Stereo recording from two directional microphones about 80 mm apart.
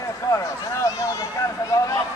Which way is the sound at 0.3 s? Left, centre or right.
Left.